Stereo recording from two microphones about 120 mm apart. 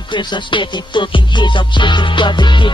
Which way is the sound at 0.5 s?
45° left (ahead or behind).